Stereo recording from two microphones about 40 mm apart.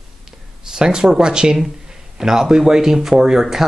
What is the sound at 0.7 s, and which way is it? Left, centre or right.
Speech, centre.